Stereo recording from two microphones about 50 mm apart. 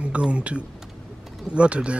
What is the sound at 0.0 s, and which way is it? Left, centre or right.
A man's voice, right.